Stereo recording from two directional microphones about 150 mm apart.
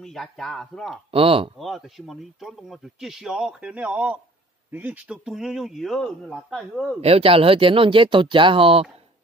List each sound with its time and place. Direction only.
0.0 s speech: 5° left (ahead or behind)
1.1 s speech: 40° right (ahead or behind)
1.6 s speech: centre (ahead or behind)
7.0 s speech: 45° right (ahead or behind)